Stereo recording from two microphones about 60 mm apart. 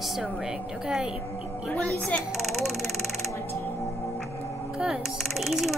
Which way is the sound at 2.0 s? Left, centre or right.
Left.